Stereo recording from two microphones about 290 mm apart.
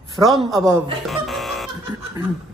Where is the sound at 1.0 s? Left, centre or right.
Centre.